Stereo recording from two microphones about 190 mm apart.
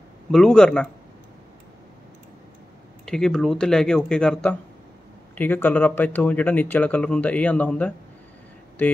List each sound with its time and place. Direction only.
0.3 s a man's voice: 5° left (ahead or behind)
3.1 s a man's voice: 5° left (ahead or behind)